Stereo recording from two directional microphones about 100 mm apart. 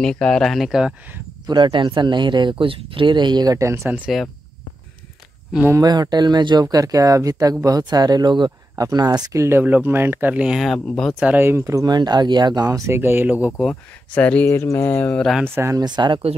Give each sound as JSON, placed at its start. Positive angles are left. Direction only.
{"t": 0.0, "sound": "speech", "side_deg": 5}
{"t": 1.5, "sound": "speech", "side_deg": -55}
{"t": 5.7, "sound": "speech", "side_deg": -40}
{"t": 10.6, "sound": "speech", "side_deg": 0}
{"t": 11.1, "sound": "speech", "side_deg": -10}
{"t": 11.4, "sound": "speech", "side_deg": -25}
{"t": 11.8, "sound": "speech", "side_deg": -45}
{"t": 12.6, "sound": "speech", "side_deg": -30}
{"t": 14.1, "sound": "speech", "side_deg": 15}
{"t": 15.4, "sound": "speech", "side_deg": -25}
{"t": 15.8, "sound": "speech", "side_deg": -50}